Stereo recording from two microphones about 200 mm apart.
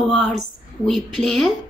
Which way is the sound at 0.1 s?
Centre (ahead or behind).